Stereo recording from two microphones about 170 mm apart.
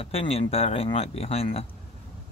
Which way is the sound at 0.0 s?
35° left (ahead or behind).